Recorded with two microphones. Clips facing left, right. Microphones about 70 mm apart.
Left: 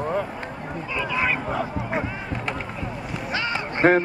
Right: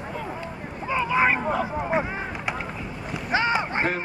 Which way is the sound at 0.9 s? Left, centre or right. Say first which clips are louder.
Right 4 dB; right.